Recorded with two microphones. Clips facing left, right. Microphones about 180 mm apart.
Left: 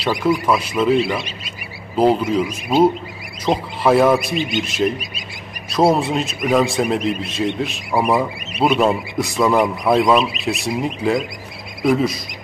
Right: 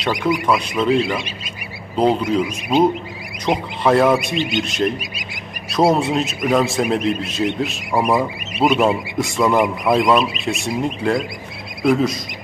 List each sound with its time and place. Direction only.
0.0 s speech: 5° left (ahead or behind)